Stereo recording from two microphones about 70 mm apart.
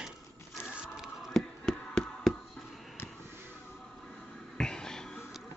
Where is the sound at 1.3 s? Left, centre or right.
Centre.